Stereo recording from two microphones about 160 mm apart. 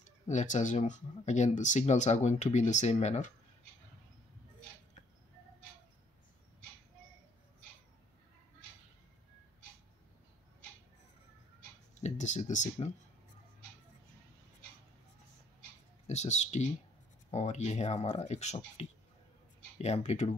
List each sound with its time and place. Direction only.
0.0 s speech: 50° left (ahead or behind)
12.0 s speech: 50° left (ahead or behind)
16.1 s speech: 45° left (ahead or behind)